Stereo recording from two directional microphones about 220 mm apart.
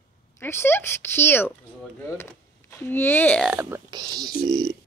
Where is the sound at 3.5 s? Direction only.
10° right (ahead or behind).